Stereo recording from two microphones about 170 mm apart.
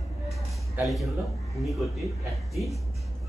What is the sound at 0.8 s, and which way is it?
A man's voice, centre (ahead or behind).